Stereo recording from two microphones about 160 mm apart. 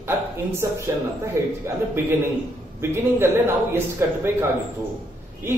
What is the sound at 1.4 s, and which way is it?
Speech, 20° right (ahead or behind).